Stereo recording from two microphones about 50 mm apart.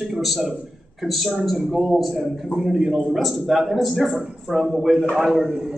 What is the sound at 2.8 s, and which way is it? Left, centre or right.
Speech, centre.